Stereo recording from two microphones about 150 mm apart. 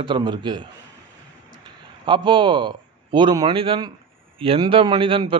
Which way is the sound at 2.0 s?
30° right (ahead or behind).